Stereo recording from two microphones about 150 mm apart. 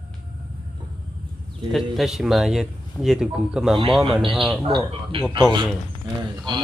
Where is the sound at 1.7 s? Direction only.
Centre (ahead or behind).